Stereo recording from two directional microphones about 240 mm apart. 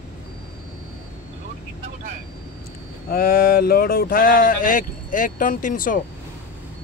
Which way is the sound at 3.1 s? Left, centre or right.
Left.